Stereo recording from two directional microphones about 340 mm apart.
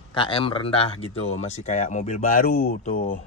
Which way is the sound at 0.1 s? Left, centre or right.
Centre.